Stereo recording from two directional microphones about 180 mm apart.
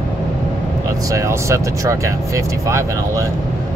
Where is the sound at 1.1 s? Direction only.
15° right (ahead or behind).